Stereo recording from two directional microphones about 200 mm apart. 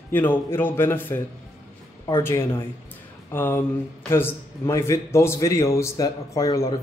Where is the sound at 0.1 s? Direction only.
10° left (ahead or behind).